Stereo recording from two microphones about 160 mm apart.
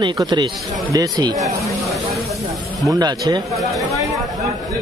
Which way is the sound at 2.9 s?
25° right (ahead or behind).